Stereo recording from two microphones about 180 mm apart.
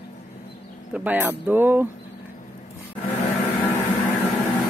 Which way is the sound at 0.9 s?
10° right (ahead or behind).